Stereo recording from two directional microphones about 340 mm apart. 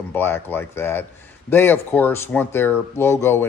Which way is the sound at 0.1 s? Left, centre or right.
Centre.